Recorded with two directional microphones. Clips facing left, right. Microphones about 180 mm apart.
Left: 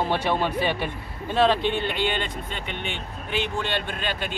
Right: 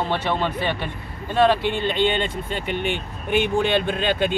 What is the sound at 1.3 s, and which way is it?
Speech, centre (ahead or behind).